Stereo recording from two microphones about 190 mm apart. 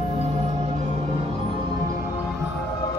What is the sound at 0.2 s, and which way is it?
Music, 35° right (ahead or behind).